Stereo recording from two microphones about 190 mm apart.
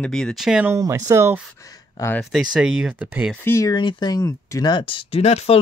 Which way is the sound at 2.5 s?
5° right (ahead or behind).